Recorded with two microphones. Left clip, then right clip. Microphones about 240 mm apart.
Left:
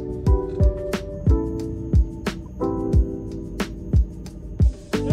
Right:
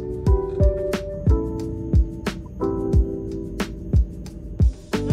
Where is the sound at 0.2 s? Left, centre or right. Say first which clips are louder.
Right 3 dB; centre.